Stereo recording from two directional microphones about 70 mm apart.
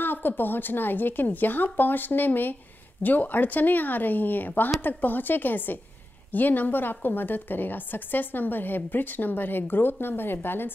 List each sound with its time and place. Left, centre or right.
0.0 s a woman's voice: left